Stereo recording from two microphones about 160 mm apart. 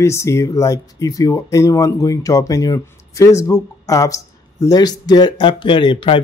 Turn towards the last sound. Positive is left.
turn(degrees=30)  # may be behind; listen again after turning